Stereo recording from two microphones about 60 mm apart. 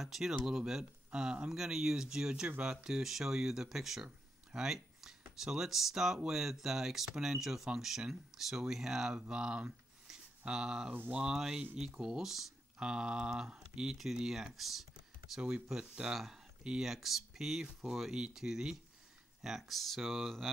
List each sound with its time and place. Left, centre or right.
0.0 s speech: centre
10.9 s speech: right
11.1 s speech: centre